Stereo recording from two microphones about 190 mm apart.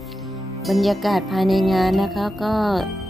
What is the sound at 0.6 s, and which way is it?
Music, centre (ahead or behind).